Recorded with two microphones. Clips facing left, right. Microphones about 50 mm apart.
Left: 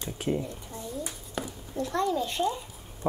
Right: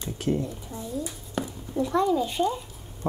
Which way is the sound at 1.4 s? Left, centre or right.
Centre.